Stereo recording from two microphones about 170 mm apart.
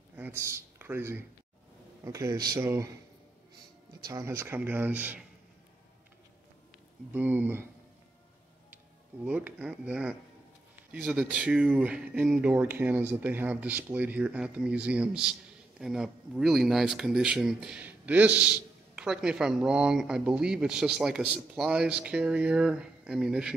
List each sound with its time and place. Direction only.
0.1 s a sound: 15° right (ahead or behind)
2.0 s speech: 20° right (ahead or behind)
4.0 s speech: 20° right (ahead or behind)
7.1 s speech: 10° right (ahead or behind)
9.2 s speech: 10° right (ahead or behind)